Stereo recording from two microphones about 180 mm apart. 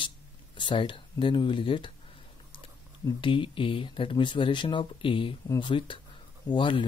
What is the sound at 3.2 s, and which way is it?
Speech, 30° left (ahead or behind).